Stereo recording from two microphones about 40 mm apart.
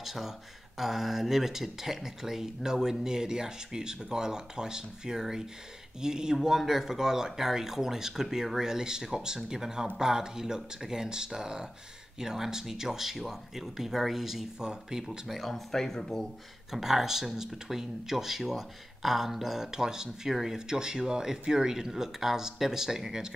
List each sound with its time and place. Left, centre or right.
0.0 s speech: centre
15.0 s speech: centre
16.7 s speech: centre